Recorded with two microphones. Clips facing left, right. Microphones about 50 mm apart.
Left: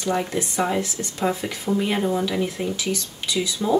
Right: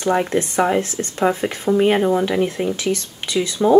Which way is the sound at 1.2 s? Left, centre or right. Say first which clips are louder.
Right 5 dB; right.